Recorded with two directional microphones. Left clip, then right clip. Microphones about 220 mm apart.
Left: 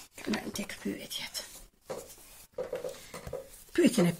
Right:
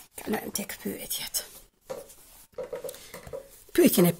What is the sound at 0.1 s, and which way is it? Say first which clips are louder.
Speech: right 4 dB; 50° right (ahead or behind).